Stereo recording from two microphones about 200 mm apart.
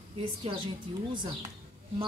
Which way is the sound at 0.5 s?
30° right (ahead or behind).